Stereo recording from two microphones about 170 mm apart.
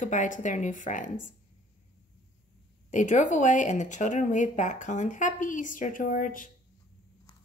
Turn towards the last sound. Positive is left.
turn(degrees=55)  # may be behind; listen again after turning